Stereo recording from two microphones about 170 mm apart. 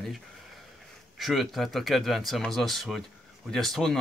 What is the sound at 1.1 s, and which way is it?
Speech, centre (ahead or behind).